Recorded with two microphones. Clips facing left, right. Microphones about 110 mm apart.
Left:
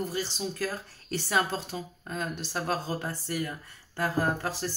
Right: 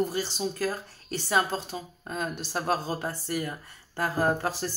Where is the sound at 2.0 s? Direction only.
20° right (ahead or behind).